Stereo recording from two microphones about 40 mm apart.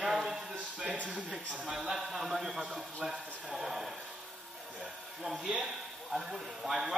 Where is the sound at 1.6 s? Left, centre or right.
Centre.